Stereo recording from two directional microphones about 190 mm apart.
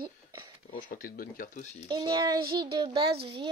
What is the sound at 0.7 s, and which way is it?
Speech, 45° left (ahead or behind).